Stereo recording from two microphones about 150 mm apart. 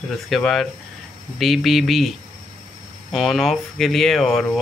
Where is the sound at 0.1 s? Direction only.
Centre (ahead or behind).